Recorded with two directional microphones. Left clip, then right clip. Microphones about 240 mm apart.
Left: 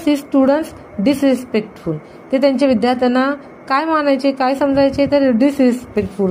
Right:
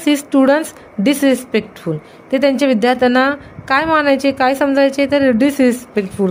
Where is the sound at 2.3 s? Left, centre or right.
Right.